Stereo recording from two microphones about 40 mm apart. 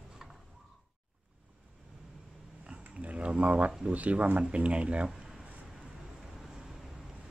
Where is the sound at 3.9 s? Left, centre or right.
Right.